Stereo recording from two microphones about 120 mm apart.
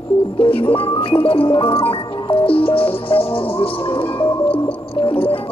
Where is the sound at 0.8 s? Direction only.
50° left (ahead or behind).